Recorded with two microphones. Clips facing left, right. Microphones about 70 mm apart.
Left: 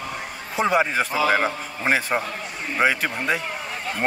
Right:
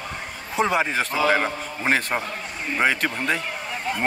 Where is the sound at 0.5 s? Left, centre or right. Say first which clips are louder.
Left 1 dB; centre.